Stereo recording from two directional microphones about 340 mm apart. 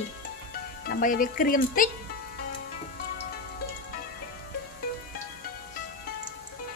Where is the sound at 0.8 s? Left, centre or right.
Left.